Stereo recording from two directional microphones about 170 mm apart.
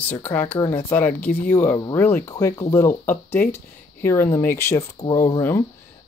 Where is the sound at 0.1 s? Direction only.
10° left (ahead or behind).